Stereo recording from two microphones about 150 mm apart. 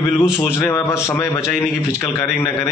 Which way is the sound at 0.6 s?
15° left (ahead or behind).